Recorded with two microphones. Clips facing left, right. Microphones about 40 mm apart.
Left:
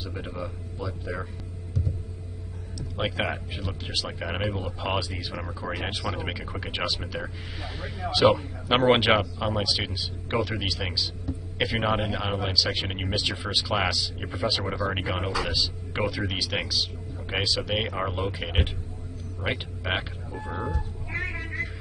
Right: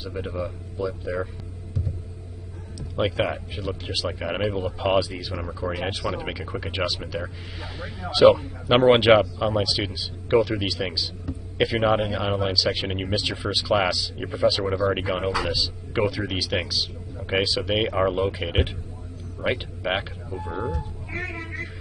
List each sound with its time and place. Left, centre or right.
0.0 s speech: centre
3.0 s speech: centre
20.6 s cat: centre